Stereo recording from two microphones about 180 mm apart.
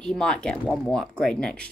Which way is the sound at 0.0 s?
5° left (ahead or behind).